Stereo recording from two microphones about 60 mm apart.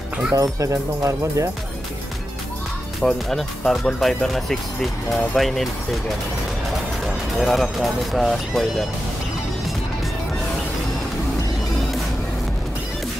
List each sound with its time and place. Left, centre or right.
0.3 s speech: right
3.0 s speech: centre
7.1 s speech: centre